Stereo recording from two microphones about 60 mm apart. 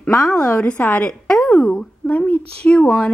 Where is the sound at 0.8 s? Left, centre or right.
Left.